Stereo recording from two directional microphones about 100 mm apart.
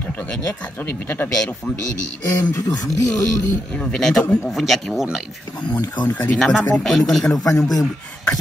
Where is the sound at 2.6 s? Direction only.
40° left (ahead or behind).